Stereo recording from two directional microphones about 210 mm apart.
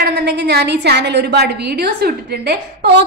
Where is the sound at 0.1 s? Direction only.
50° right (ahead or behind).